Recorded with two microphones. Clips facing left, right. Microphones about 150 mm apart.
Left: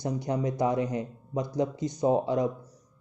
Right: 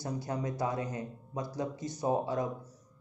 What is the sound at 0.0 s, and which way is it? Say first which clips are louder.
Speech: left 6 dB; 20° left (ahead or behind).